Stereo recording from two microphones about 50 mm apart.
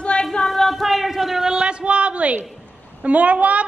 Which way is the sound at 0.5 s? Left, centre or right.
Centre.